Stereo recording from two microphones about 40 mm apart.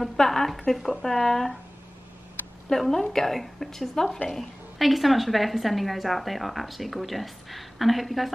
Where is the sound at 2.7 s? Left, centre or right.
Centre.